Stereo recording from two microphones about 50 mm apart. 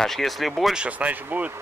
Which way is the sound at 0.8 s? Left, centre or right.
Right.